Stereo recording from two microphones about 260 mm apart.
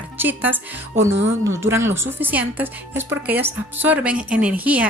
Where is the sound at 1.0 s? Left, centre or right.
Right.